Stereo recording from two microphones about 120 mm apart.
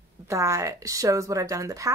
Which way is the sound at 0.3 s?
25° right (ahead or behind).